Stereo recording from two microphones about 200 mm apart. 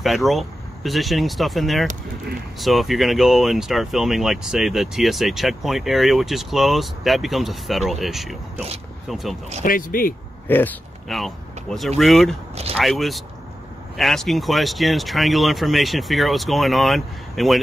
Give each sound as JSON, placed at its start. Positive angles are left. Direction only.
{"t": 0.0, "sound": "speech", "side_deg": 0}
{"t": 9.6, "sound": "speech", "side_deg": 45}
{"t": 10.5, "sound": "speech", "side_deg": 5}